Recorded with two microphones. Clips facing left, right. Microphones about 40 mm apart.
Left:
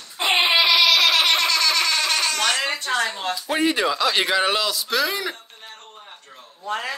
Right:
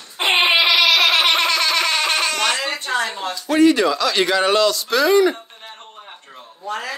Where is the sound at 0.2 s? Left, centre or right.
Right.